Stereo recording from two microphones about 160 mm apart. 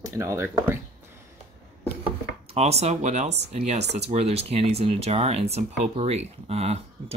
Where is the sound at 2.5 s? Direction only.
40° right (ahead or behind).